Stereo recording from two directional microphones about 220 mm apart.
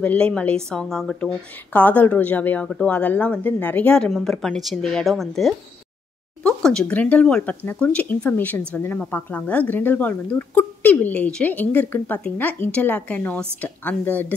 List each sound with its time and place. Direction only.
0.0 s a woman's voice: 5° left (ahead or behind)